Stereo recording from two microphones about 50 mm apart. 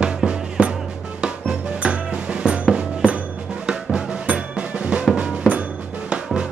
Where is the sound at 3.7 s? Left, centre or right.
Centre.